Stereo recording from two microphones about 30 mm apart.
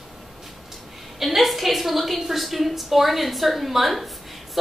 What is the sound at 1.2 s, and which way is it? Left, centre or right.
A woman's voice, centre.